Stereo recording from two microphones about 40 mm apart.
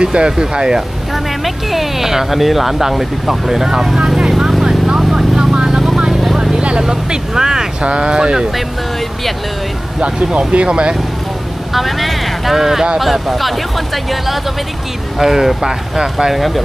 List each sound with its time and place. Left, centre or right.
0.0 s speech: right
1.1 s speech: centre
4.3 s vehicle: centre
4.6 s vehicle: centre
6.8 s speech: centre
7.8 s speech: right
9.9 s speech: right
11.7 s vehicle: centre
12.5 s speech: centre
16.3 s speech: centre